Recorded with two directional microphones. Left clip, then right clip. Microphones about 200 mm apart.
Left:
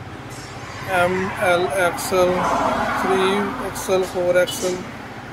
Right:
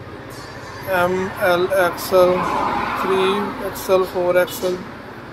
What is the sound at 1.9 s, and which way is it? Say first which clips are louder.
Speech: right 4 dB; 25° right (ahead or behind).